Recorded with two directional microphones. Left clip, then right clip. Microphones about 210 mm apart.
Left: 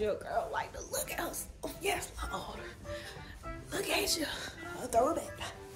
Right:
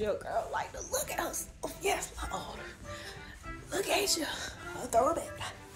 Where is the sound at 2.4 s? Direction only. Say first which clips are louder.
Right 1 dB; 20° left (ahead or behind).